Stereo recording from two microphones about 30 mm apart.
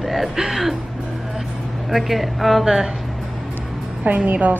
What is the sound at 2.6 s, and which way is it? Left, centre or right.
Speech, centre.